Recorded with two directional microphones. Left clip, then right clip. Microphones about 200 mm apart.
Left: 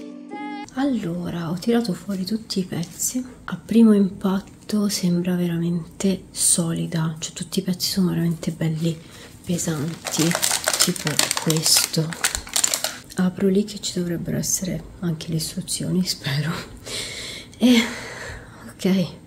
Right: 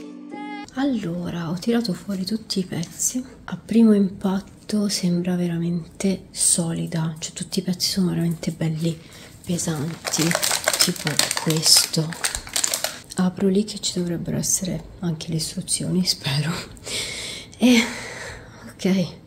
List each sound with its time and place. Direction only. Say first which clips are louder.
0.7 s a woman's voice: even; centre (ahead or behind)
10.0 s speech: even; 15° right (ahead or behind)
10.8 s a woman's voice: even; centre (ahead or behind)